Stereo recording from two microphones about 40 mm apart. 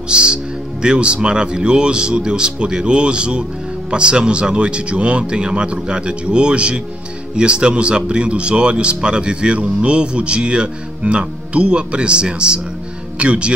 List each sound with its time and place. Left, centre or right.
0.1 s speech: right